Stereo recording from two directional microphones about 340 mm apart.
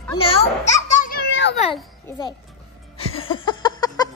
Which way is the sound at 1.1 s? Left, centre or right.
Left.